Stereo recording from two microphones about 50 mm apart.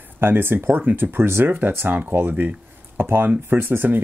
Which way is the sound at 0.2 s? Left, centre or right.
Right.